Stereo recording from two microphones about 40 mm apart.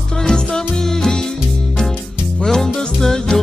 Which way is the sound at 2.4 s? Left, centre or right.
Centre.